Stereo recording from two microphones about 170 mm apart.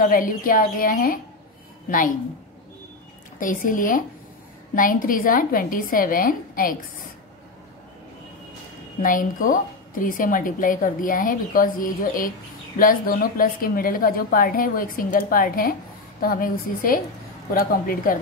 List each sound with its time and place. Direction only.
0.0 s a woman's voice: 55° left (ahead or behind)
3.3 s a woman's voice: 50° left (ahead or behind)
9.0 s a woman's voice: 50° left (ahead or behind)